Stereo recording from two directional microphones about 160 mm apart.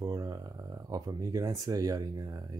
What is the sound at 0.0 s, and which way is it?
Speech, 25° right (ahead or behind).